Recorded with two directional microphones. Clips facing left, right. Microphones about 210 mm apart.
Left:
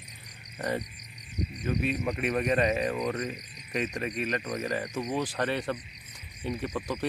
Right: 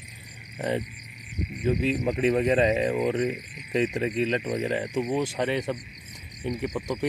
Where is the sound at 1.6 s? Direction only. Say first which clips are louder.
Right 5 dB; 30° right (ahead or behind).